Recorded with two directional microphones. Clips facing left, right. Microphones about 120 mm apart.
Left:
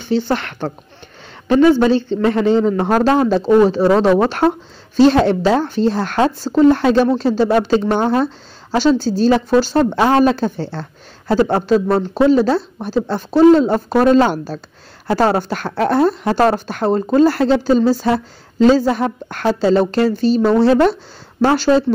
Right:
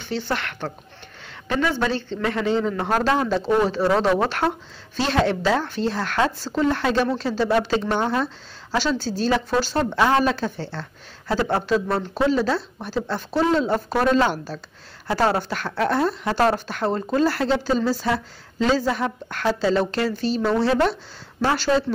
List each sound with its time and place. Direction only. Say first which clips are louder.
0.0 s a man's voice: left 8 dB; 30° left (ahead or behind)
2.2 s a man's voice: left 7 dB; 35° left (ahead or behind)
8.8 s a man's voice: left 11 dB; 30° left (ahead or behind)
13.4 s a man's voice: left 10 dB; 45° left (ahead or behind)